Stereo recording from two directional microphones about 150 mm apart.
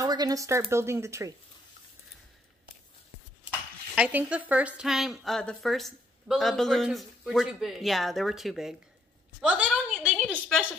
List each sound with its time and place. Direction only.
0.0 s a woman's voice: 25° right (ahead or behind)
3.4 s a woman's voice: 10° right (ahead or behind)
9.7 s a sound: 5° right (ahead or behind)